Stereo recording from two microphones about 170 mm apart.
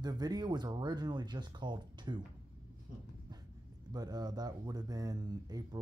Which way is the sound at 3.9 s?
25° right (ahead or behind).